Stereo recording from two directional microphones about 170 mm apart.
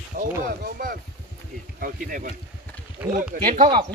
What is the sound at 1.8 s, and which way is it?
Speech, 50° right (ahead or behind).